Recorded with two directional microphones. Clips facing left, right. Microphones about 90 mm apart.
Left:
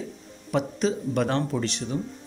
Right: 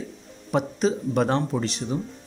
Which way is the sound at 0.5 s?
25° right (ahead or behind).